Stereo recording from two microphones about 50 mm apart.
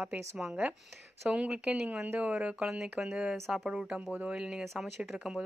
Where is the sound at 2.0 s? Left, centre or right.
Right.